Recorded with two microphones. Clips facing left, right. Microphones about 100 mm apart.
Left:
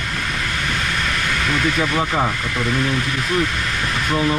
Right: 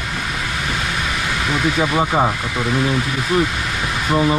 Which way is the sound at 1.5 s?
10° right (ahead or behind).